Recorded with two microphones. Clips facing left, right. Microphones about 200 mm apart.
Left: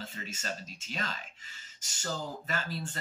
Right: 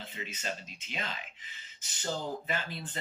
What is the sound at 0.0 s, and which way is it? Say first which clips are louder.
Speech: right 1 dB; 45° left (ahead or behind).